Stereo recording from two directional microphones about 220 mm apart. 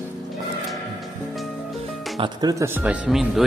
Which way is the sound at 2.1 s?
20° right (ahead or behind).